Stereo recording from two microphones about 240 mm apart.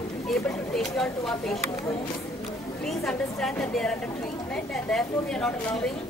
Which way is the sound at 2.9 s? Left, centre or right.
Centre.